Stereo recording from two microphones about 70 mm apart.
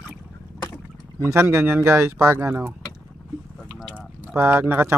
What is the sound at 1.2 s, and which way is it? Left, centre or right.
Speech, right.